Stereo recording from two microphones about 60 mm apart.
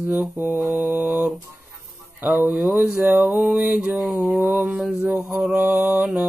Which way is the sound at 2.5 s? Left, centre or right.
Right.